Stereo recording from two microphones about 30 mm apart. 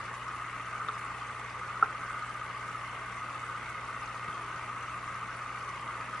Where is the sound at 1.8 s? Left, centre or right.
Centre.